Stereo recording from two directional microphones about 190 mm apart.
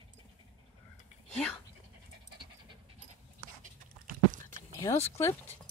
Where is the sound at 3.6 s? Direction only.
45° right (ahead or behind).